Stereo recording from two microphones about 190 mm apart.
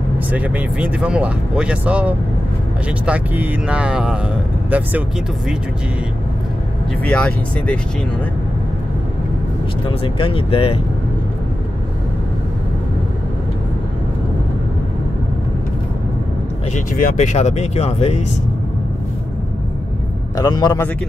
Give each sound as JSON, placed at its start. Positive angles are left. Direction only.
{"t": 0.3, "sound": "speech", "side_deg": -10}
{"t": 7.1, "sound": "speech", "side_deg": 5}
{"t": 10.0, "sound": "speech", "side_deg": 30}
{"t": 16.7, "sound": "speech", "side_deg": 40}
{"t": 20.3, "sound": "speech", "side_deg": 20}